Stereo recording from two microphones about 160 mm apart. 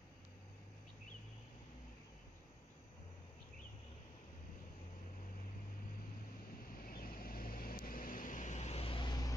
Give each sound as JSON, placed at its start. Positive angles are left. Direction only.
{"t": 6.8, "sound": "vehicle", "side_deg": 65}